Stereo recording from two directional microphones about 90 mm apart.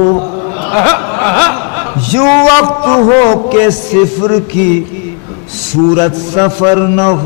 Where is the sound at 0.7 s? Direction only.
15° left (ahead or behind).